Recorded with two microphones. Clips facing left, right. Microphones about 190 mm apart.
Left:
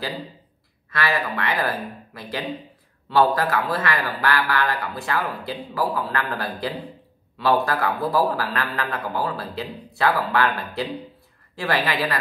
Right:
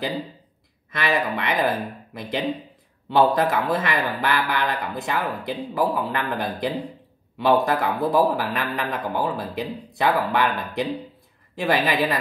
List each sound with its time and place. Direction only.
0.8 s a man's voice: 20° right (ahead or behind)